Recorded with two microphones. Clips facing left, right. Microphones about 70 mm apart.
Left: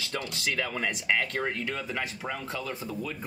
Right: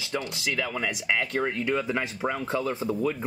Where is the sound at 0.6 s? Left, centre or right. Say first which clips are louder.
Right 2 dB; centre.